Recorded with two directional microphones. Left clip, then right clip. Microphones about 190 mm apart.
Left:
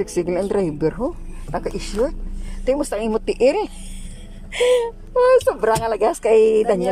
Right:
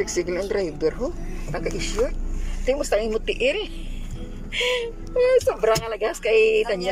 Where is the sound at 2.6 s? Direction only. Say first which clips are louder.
Left 1 dB; 15° left (ahead or behind).